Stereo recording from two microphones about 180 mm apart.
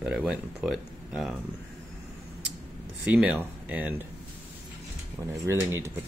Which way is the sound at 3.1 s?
10° right (ahead or behind).